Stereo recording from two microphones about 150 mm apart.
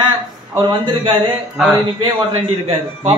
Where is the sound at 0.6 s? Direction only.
30° right (ahead or behind).